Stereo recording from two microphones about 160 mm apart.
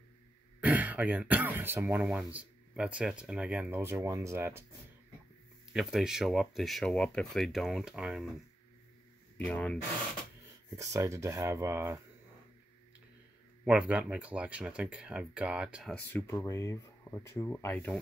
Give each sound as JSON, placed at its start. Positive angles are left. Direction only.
{"t": 0.6, "sound": "speech", "side_deg": -10}
{"t": 5.7, "sound": "speech", "side_deg": -5}
{"t": 9.4, "sound": "speech", "side_deg": 5}
{"t": 10.8, "sound": "speech", "side_deg": -20}
{"t": 13.7, "sound": "speech", "side_deg": -5}
{"t": 15.9, "sound": "speech", "side_deg": 10}